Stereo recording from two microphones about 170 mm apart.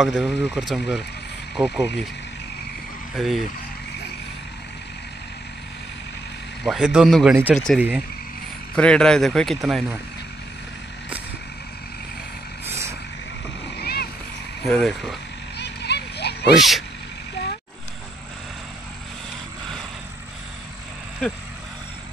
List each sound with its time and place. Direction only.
0.0 s a man's voice: 5° right (ahead or behind)
3.2 s a man's voice: centre (ahead or behind)
6.6 s a man's voice: centre (ahead or behind)
12.6 s vehicle: 15° right (ahead or behind)
13.7 s a sound: 65° left (ahead or behind)
14.6 s a man's voice: centre (ahead or behind)
15.5 s a sound: 80° left
16.5 s a man's voice: centre (ahead or behind)